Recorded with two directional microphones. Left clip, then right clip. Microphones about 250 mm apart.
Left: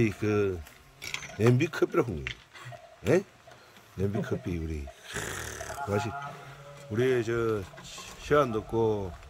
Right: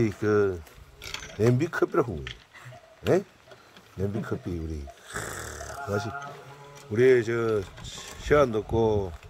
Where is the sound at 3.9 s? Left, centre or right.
Centre.